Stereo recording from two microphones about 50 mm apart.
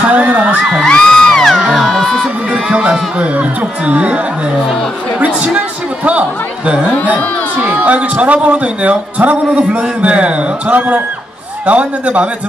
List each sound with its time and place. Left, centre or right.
0.0 s whoop: right
0.8 s music: centre
3.2 s a man's voice: right
5.2 s a man's voice: right
7.5 s a man's voice: right